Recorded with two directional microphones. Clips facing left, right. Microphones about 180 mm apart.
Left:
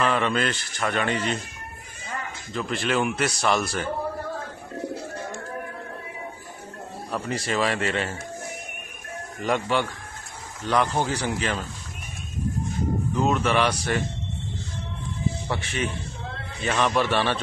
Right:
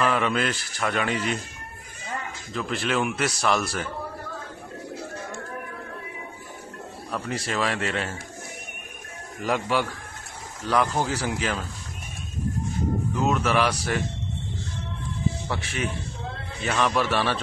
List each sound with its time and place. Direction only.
0.0 s a man's voice: 5° right (ahead or behind)
2.5 s a man's voice: centre (ahead or behind)
7.1 s a man's voice: centre (ahead or behind)
9.4 s a man's voice: 5° right (ahead or behind)
13.1 s speech: 5° right (ahead or behind)
15.4 s a man's voice: centre (ahead or behind)